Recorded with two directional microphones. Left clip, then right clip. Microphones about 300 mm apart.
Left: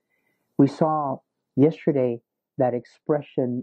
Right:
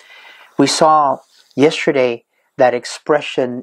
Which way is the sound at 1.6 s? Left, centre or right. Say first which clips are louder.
Right 8 dB; centre.